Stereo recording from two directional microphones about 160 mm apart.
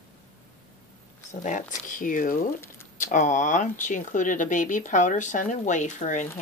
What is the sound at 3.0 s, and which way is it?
Speech, 50° left (ahead or behind).